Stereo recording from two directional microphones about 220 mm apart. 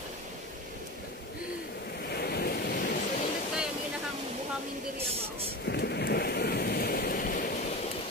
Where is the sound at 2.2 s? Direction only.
45° left (ahead or behind).